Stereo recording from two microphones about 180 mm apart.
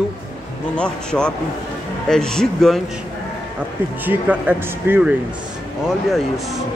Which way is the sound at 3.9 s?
10° right (ahead or behind).